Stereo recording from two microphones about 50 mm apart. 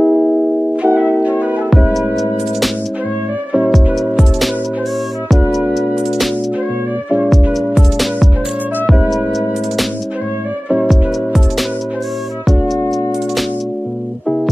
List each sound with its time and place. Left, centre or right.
0.0 s music: centre
0.8 s music: right
3.7 s music: centre
7.7 s music: centre
10.8 s music: centre